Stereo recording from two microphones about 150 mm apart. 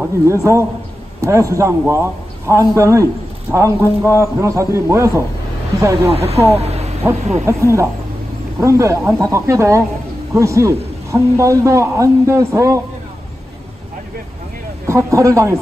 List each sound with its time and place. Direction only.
0.0 s a man's voice: 20° right (ahead or behind)
3.8 s speech: 15° left (ahead or behind)
4.2 s a man's voice: 20° right (ahead or behind)
6.6 s a sound: 45° right (ahead or behind)
7.4 s a man's voice: 20° right (ahead or behind)
14.9 s a man's voice: 20° right (ahead or behind)